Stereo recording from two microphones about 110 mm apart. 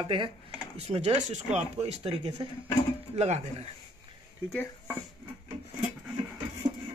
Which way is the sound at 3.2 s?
70° right (ahead or behind).